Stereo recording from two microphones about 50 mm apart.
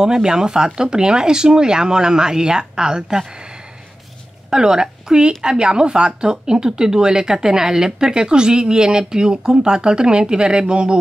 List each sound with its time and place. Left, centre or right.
0.0 s a woman's voice: centre
4.5 s a woman's voice: centre